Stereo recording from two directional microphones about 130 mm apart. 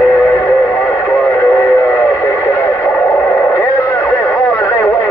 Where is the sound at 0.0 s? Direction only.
15° left (ahead or behind).